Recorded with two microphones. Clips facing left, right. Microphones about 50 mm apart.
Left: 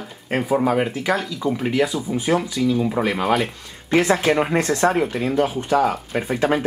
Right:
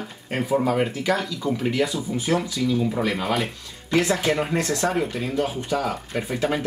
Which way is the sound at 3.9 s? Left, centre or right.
Left.